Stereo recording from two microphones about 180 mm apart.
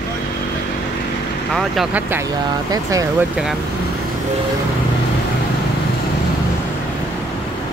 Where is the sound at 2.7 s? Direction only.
20° right (ahead or behind).